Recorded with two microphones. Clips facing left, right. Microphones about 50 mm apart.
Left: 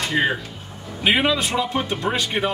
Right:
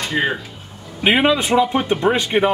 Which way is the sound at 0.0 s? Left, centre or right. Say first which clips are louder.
Right 1 dB; centre.